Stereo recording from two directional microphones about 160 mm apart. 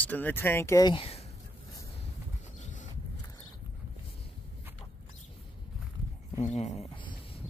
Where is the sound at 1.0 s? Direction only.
40° left (ahead or behind).